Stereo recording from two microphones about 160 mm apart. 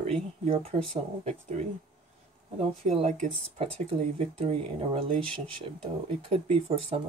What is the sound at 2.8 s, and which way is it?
Speech, 40° right (ahead or behind).